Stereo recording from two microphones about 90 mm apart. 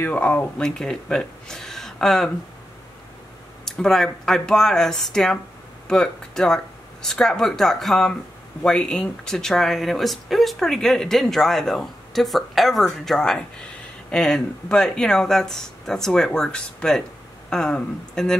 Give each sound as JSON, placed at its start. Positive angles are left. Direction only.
{"t": 0.0, "sound": "speech", "side_deg": 15}
{"t": 3.6, "sound": "speech", "side_deg": 5}